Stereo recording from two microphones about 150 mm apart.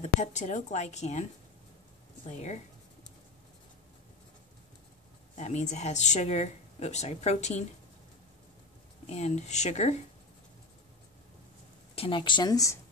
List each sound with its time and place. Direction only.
0.0 s speech: 50° left (ahead or behind)
2.2 s speech: 50° left (ahead or behind)
5.4 s speech: 50° left (ahead or behind)
9.0 s speech: 45° left (ahead or behind)
11.9 s speech: 35° left (ahead or behind)